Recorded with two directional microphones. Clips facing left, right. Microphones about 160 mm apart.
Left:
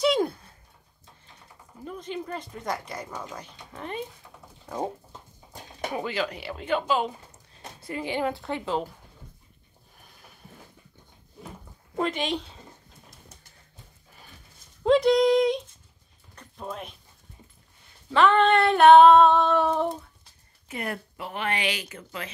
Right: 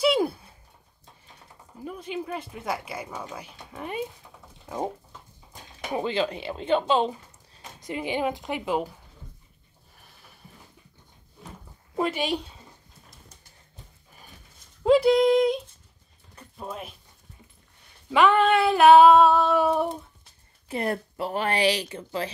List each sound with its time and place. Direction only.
0.0 s a sound: 5° right (ahead or behind)
1.9 s speech: 10° right (ahead or behind)
5.9 s speech: 25° right (ahead or behind)
7.8 s speech: 15° right (ahead or behind)
11.9 s speech: 10° right (ahead or behind)
14.8 s female singing: 5° right (ahead or behind)
16.3 s a sound: 5° right (ahead or behind)
18.1 s female singing: 10° right (ahead or behind)
20.6 s speech: 35° right (ahead or behind)